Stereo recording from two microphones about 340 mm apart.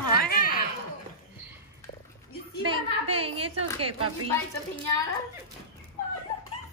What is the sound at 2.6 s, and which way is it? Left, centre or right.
Speech, centre.